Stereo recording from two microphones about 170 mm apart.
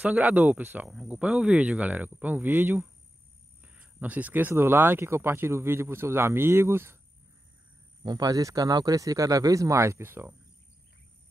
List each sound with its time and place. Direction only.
0.0 s speech: 10° right (ahead or behind)
8.0 s speech: 25° right (ahead or behind)